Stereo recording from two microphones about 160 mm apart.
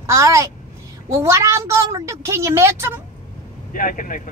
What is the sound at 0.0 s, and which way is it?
A child's voice, 20° right (ahead or behind).